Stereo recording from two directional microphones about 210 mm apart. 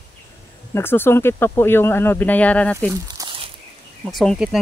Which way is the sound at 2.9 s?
20° right (ahead or behind).